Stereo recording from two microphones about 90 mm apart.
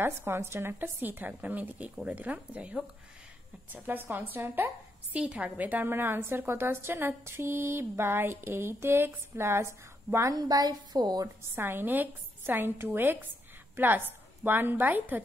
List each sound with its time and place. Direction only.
0.0 s a woman's voice: 25° right (ahead or behind)
10.3 s a woman's voice: 45° right (ahead or behind)
11.5 s a woman's voice: 25° right (ahead or behind)